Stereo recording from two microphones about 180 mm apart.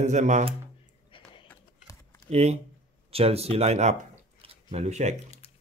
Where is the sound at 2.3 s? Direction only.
35° right (ahead or behind).